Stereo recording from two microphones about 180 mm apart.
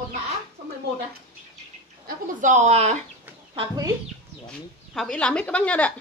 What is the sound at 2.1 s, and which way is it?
Speech, 45° right (ahead or behind).